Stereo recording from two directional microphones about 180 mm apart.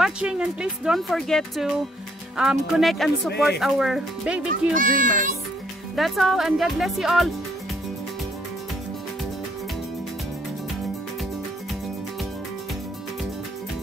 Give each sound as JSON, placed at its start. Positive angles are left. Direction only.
{"t": 0.0, "sound": "speech", "side_deg": -5}
{"t": 4.7, "sound": "a child's voice", "side_deg": -45}
{"t": 5.9, "sound": "speech", "side_deg": 0}